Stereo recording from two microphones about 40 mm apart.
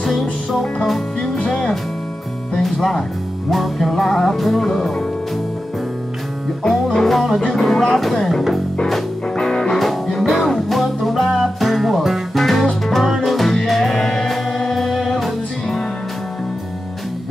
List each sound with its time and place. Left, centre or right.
0.0 s music: centre
6.9 s music: centre
7.4 s speech: centre
9.4 s music: centre
9.8 s music: centre